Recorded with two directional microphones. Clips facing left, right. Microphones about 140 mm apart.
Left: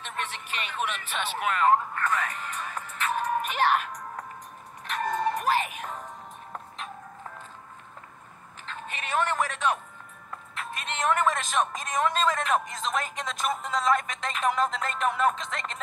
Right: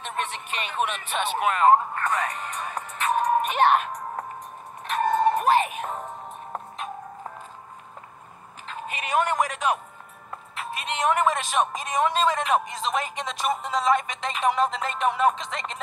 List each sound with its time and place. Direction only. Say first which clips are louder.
0.0 s speech: right 4 dB; 20° right (ahead or behind)
2.7 s music: right 5 dB; 25° right (ahead or behind)
8.7 s speech: right 4 dB; 10° right (ahead or behind)